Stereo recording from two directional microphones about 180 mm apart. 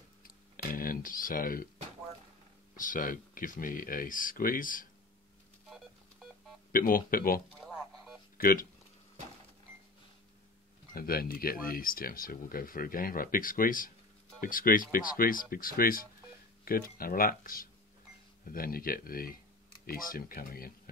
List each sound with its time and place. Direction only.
0.2 s a sound: 50° left (ahead or behind)
2.7 s speech: 50° left (ahead or behind)
6.7 s speech: 50° left (ahead or behind)
10.9 s speech: 55° left (ahead or behind)